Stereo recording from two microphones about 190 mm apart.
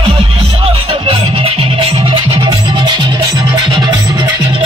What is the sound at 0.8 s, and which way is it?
Music, 25° right (ahead or behind).